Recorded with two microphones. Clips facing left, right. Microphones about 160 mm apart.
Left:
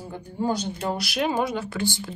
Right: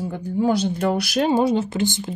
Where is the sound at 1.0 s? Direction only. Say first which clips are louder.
Right 6 dB; 35° right (ahead or behind); by 2.2 s 20° right (ahead or behind).